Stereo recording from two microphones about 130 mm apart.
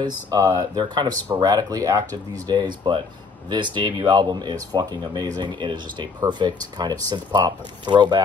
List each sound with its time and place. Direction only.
0.0 s speech: 25° right (ahead or behind)